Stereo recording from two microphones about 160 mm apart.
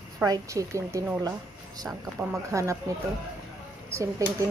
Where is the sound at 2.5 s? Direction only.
20° right (ahead or behind).